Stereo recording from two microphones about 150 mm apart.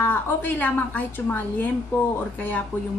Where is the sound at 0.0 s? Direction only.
10° left (ahead or behind).